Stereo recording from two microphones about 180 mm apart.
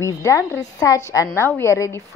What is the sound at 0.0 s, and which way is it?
A woman's voice, 15° left (ahead or behind).